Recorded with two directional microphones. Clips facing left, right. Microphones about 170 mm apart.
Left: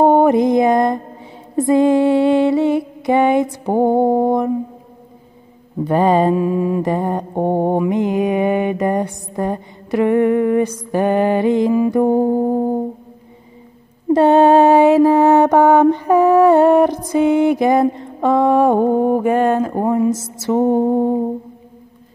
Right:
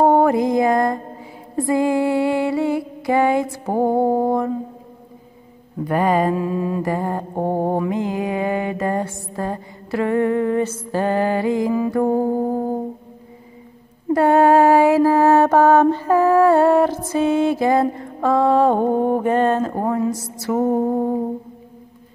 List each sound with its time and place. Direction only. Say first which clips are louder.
0.0 s mantra: left 3 dB; 20° left (ahead or behind)
5.9 s mantra: left 4 dB; 25° left (ahead or behind)
14.1 s mantra: left 3 dB; 25° left (ahead or behind)